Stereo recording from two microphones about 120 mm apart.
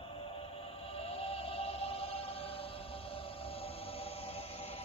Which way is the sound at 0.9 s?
55° left (ahead or behind).